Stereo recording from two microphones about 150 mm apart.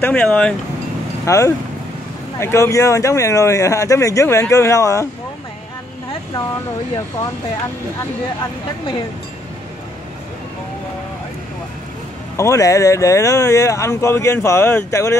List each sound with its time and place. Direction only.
0.0 s speech: 10° left (ahead or behind)
1.2 s speech: 20° left (ahead or behind)
12.4 s speech: 20° left (ahead or behind)